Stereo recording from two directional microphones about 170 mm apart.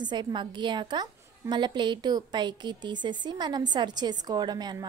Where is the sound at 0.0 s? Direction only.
25° right (ahead or behind).